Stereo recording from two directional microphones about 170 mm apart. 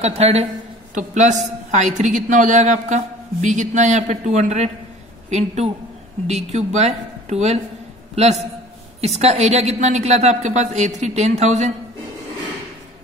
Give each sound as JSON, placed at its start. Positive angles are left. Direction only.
{"t": 0.0, "sound": "a woman's voice", "side_deg": -40}